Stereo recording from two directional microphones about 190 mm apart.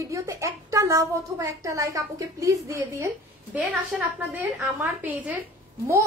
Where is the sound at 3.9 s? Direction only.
Centre (ahead or behind).